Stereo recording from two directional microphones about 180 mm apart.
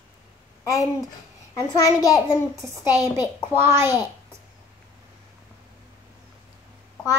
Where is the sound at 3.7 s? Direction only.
15° right (ahead or behind).